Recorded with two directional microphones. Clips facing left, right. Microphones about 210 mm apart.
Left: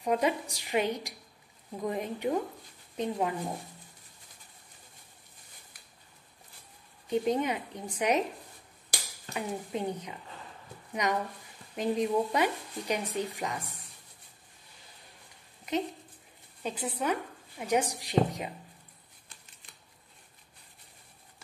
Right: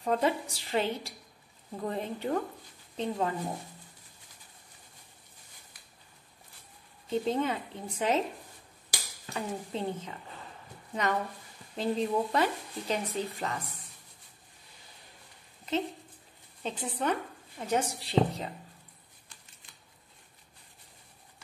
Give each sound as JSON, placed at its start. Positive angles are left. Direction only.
{"t": 0.0, "sound": "speech", "side_deg": 15}
{"t": 7.1, "sound": "speech", "side_deg": 15}
{"t": 9.3, "sound": "speech", "side_deg": 15}
{"t": 16.6, "sound": "speech", "side_deg": 10}